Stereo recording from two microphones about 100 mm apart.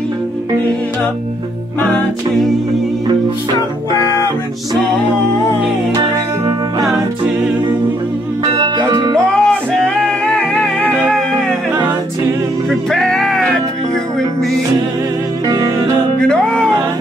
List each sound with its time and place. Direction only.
8.5 s music: 35° right (ahead or behind)
9.1 s music: 10° left (ahead or behind)
12.6 s music: 5° left (ahead or behind)
15.4 s music: 35° right (ahead or behind)
16.2 s music: 10° left (ahead or behind)